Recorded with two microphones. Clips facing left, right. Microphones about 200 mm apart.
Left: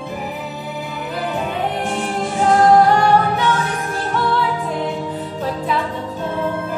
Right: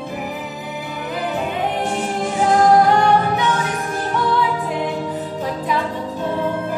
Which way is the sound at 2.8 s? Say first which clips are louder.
Left 1 dB; 15° right (ahead or behind).